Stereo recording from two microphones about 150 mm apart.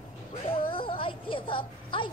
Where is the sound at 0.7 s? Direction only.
35° left (ahead or behind).